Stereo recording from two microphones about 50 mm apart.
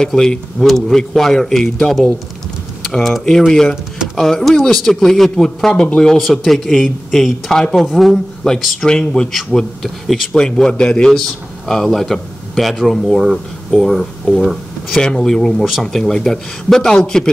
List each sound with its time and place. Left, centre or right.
0.0 s speech: centre
2.9 s speech: centre
8.8 s speech: centre
9.5 s speech: centre
10.3 s a man's voice: centre
15.0 s speech: centre